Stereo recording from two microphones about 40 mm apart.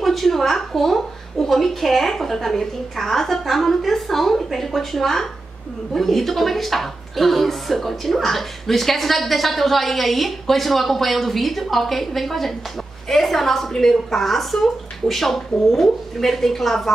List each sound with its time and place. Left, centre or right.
0.0 s a woman's voice: centre